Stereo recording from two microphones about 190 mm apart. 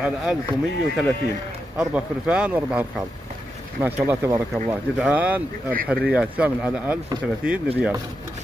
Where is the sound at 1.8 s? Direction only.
5° right (ahead or behind).